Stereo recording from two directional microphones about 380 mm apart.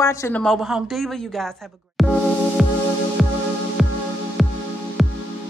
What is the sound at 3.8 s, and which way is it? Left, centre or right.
Music, centre.